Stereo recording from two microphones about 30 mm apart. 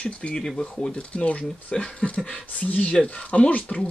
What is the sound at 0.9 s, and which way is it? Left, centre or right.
Speech, left.